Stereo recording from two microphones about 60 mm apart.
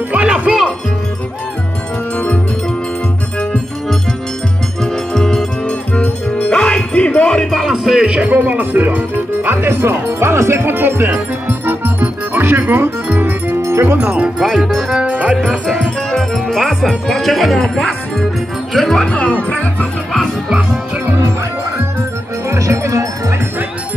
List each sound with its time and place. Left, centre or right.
0.3 s music: centre
2.1 s music: left
5.1 s music: centre
6.0 s music: left
6.5 s music: centre
7.2 s music: centre
7.6 s speech: centre; by 13.6 s right
13.6 s music: right
13.9 s speech: centre
14.4 s speech: centre
15.0 s music: right
16.2 s speech: centre
19.0 s speech: centre
22.5 s speech: right